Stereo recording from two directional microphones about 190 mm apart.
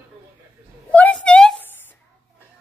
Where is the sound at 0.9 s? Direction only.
5° left (ahead or behind).